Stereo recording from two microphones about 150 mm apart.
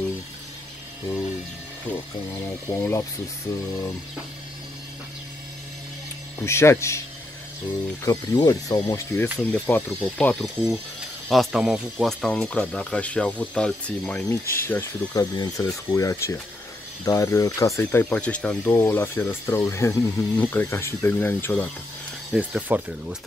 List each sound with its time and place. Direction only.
2.4 s speech: 15° left (ahead or behind)
6.4 s speech: 20° left (ahead or behind)
8.0 s speech: 20° left (ahead or behind)
10.4 s speech: 5° right (ahead or behind); by 21.6 s 15° left (ahead or behind)
22.3 s speech: 10° right (ahead or behind)